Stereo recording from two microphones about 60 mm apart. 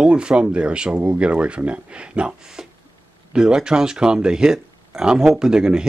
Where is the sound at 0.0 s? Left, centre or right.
Centre.